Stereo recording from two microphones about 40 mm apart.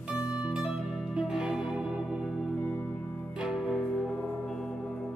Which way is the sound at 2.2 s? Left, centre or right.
Centre.